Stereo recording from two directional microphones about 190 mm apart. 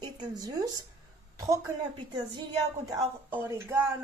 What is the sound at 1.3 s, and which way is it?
A woman's voice, 15° right (ahead or behind).